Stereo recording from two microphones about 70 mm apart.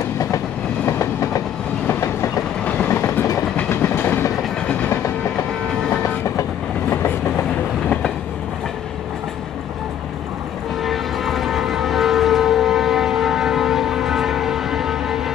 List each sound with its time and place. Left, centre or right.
0.8 s train: left
2.6 s train: left
2.9 s train: left
10.8 s train: centre